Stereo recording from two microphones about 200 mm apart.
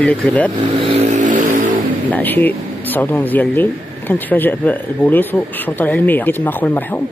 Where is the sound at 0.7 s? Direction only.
30° right (ahead or behind).